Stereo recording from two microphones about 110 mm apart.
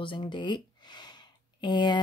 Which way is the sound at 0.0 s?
45° left (ahead or behind).